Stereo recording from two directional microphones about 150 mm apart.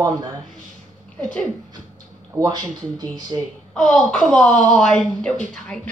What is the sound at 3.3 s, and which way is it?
Speech, 30° right (ahead or behind).